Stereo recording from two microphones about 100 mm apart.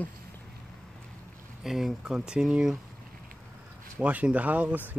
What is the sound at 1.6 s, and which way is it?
Speech, 5° right (ahead or behind).